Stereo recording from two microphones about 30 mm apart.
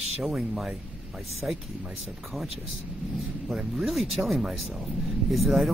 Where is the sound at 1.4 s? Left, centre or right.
Right.